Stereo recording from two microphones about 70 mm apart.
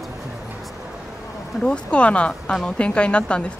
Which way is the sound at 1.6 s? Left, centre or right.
Centre.